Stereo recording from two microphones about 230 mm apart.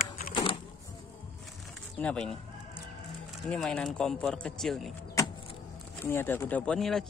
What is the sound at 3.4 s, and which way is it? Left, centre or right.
Speech, centre.